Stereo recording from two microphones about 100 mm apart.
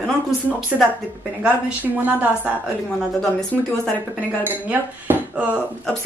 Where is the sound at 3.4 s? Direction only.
10° left (ahead or behind).